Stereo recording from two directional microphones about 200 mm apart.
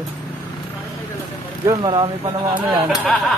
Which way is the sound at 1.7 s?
20° right (ahead or behind).